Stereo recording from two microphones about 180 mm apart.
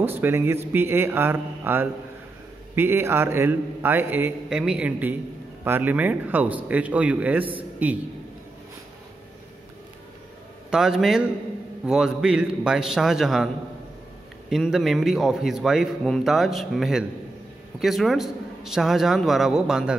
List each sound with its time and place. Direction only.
0.0 s a man's voice: 10° right (ahead or behind)
10.7 s a man's voice: centre (ahead or behind)
14.5 s a man's voice: centre (ahead or behind)